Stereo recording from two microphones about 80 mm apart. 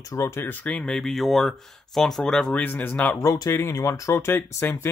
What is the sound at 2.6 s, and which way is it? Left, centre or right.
Speech, left.